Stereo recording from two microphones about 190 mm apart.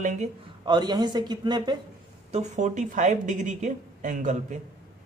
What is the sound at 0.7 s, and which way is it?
A man's voice, 20° right (ahead or behind).